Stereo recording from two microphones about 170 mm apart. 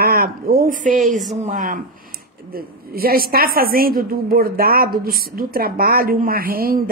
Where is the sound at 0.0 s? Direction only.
60° right (ahead or behind).